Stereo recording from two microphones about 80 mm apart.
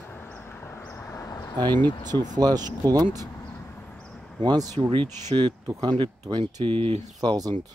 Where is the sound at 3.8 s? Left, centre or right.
Centre.